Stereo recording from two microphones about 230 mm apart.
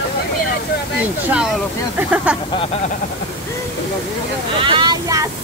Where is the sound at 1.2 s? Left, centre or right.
Centre.